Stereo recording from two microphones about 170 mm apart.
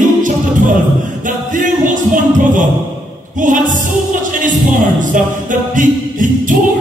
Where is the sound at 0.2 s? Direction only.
50° right (ahead or behind).